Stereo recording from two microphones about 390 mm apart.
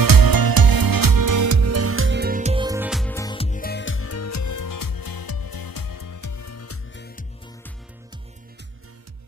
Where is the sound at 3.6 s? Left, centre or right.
Left.